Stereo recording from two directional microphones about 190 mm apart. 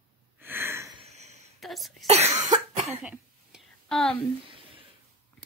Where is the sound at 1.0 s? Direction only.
35° right (ahead or behind).